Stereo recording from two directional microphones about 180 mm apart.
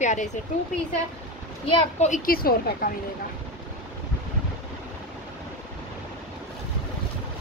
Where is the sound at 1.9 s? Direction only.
40° left (ahead or behind).